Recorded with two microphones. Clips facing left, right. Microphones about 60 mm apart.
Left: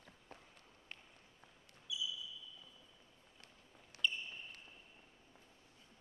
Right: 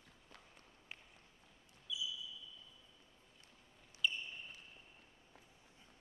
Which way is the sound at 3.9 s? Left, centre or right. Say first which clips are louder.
Even; left.